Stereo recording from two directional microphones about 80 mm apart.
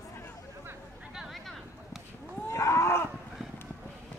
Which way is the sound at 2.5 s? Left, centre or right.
Left.